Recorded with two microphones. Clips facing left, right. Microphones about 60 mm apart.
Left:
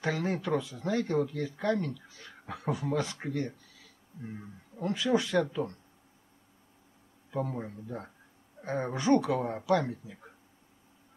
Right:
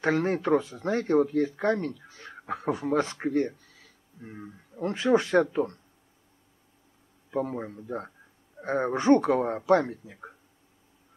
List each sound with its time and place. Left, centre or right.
0.0 s speech: right
4.8 s speech: right
7.2 s a man's voice: right